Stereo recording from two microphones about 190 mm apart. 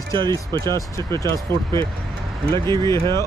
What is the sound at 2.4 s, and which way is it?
Speech, 25° right (ahead or behind).